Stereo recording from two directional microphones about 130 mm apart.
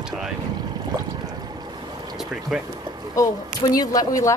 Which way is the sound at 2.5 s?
Centre (ahead or behind).